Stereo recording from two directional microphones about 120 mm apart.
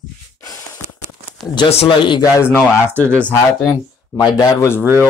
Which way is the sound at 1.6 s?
45° left (ahead or behind).